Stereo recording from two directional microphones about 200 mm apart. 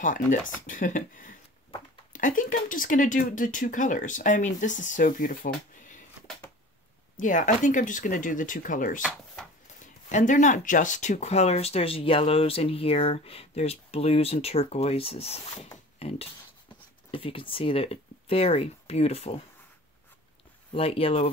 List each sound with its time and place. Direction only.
0.0 s speech: 40° left (ahead or behind)
7.2 s speech: 40° left (ahead or behind)
10.0 s speech: 40° left (ahead or behind)
20.7 s speech: 30° left (ahead or behind)